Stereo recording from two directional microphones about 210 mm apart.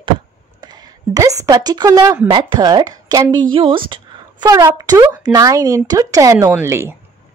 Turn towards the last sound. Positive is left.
turn(degrees=-15)  # may be behind; listen again after turning